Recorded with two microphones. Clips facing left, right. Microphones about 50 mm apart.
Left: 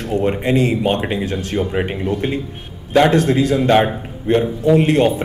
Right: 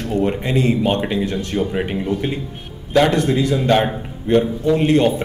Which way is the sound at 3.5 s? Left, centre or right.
Centre.